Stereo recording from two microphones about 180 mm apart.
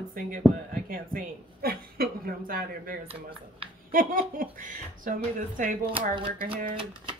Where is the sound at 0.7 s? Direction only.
50° right (ahead or behind).